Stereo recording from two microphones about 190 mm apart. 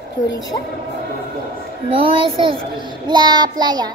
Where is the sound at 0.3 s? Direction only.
20° left (ahead or behind).